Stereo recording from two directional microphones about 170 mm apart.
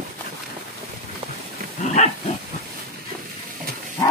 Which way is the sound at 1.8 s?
40° left (ahead or behind).